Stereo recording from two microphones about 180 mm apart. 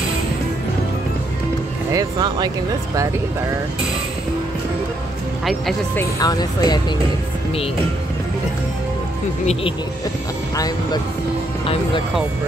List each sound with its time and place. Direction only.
1.9 s speech: 20° right (ahead or behind)
5.4 s speech: centre (ahead or behind)
5.9 s speech: 20° left (ahead or behind)
9.5 s speech: 30° left (ahead or behind)
10.5 s speech: 20° left (ahead or behind)
11.6 s speech: 30° left (ahead or behind)